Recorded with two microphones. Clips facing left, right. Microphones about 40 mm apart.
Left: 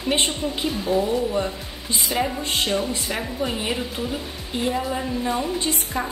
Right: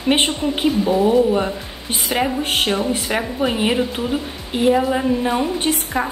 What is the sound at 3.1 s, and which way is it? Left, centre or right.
A woman's voice, right.